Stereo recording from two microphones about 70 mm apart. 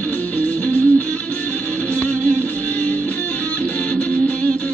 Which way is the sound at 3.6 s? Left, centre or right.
Left.